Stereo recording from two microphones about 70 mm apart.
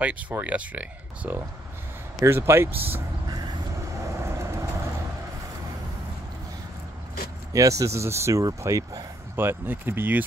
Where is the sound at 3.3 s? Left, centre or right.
Right.